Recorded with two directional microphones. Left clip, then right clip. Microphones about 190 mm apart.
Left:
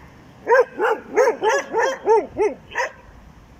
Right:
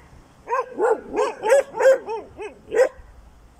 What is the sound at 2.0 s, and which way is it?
Dog, 35° left (ahead or behind).